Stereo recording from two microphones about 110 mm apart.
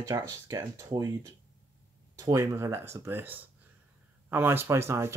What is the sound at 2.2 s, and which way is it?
Speech, 30° right (ahead or behind).